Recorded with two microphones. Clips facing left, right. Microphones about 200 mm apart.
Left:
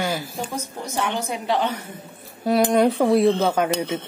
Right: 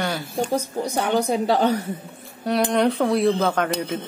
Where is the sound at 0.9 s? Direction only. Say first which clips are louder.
Right 5 dB; 40° right (ahead or behind).